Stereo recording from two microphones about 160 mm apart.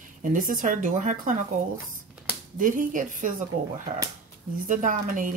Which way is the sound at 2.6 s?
55° right (ahead or behind).